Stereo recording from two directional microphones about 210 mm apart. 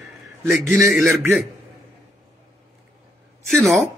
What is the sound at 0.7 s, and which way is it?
Speech, centre (ahead or behind).